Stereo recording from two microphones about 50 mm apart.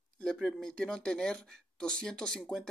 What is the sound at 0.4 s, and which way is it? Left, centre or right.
Speech, centre.